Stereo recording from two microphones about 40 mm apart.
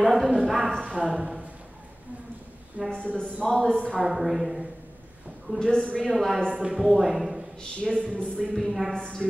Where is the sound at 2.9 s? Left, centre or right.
Left.